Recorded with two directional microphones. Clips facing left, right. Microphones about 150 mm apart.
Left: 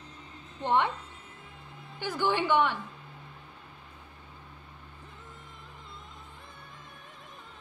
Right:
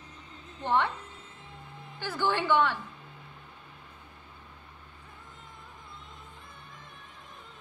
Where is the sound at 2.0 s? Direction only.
15° left (ahead or behind).